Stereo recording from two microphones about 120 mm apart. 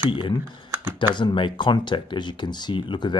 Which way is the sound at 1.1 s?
40° left (ahead or behind).